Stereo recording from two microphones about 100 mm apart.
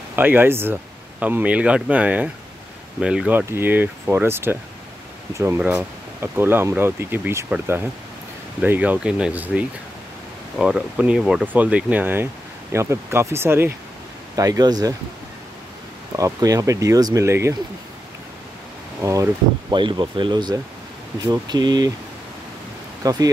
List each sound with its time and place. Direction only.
0.1 s speech: 20° right (ahead or behind)
3.3 s speech: 20° right (ahead or behind)
5.6 s speech: 10° right (ahead or behind)
6.2 s speech: 20° right (ahead or behind)
8.6 s speech: 15° right (ahead or behind)
14.3 s speech: 35° right (ahead or behind)
16.2 s speech: 35° right (ahead or behind)
19.0 s speech: 30° right (ahead or behind)
19.7 s speech: 55° right (ahead or behind)
23.0 s speech: 40° right (ahead or behind)